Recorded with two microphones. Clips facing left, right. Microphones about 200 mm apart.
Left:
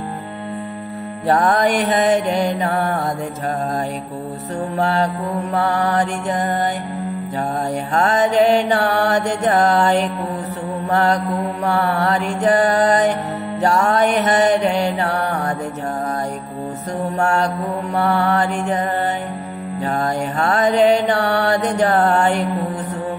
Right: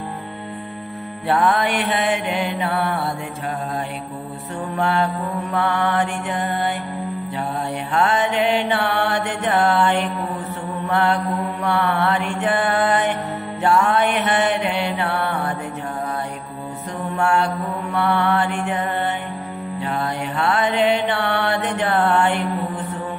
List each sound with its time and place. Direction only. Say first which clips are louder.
1.2 s mantra: left 3 dB; 40° left (ahead or behind)
4.7 s mantra: left 1 dB; 40° left (ahead or behind)
7.9 s mantra: left 3 dB; 40° left (ahead or behind)
17.2 s mantra: even; 40° left (ahead or behind)